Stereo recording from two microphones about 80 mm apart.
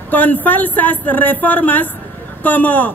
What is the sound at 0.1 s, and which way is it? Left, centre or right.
Speech, left.